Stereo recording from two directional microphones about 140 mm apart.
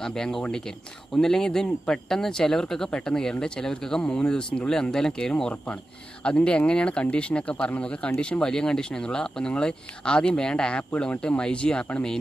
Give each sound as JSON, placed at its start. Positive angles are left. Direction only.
{"t": 0.0, "sound": "speech", "side_deg": 5}